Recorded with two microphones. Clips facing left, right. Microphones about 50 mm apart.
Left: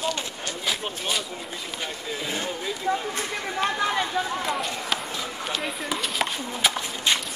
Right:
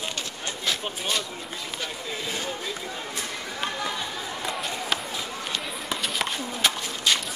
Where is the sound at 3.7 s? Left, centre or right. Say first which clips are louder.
Left 6 dB; left.